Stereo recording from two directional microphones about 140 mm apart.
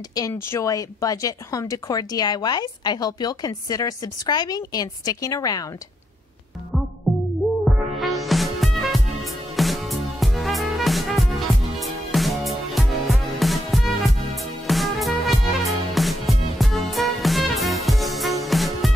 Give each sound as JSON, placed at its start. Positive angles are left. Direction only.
{"t": 0.3, "sound": "speech", "side_deg": 15}
{"t": 7.6, "sound": "music", "side_deg": 0}